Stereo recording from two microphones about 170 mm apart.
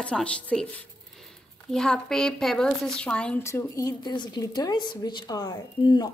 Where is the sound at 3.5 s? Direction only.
20° left (ahead or behind).